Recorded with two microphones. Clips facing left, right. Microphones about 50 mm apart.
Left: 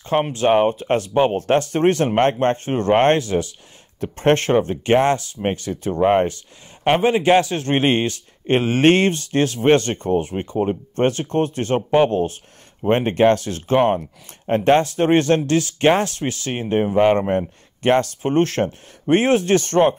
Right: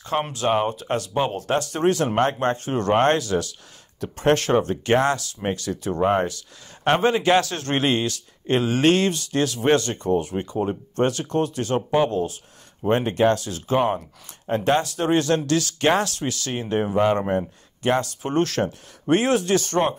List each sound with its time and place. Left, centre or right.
0.0 s a man's voice: left
6.8 s a man's voice: centre
7.8 s speech: left
17.8 s speech: left